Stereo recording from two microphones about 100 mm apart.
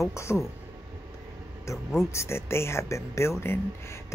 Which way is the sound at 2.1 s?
25° left (ahead or behind).